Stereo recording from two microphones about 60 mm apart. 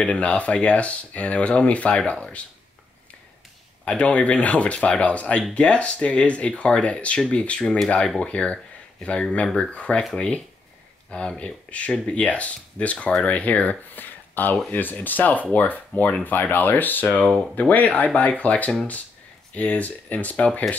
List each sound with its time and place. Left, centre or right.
0.0 s speech: left
3.8 s speech: left